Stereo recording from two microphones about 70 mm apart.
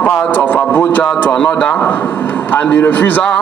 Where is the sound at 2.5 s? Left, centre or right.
Left.